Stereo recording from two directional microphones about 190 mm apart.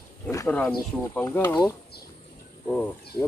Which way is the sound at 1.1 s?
10° left (ahead or behind).